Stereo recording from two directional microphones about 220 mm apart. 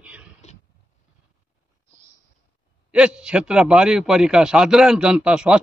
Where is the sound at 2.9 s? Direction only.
5° right (ahead or behind).